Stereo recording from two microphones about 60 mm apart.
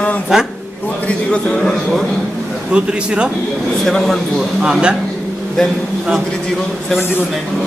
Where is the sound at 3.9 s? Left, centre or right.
Centre.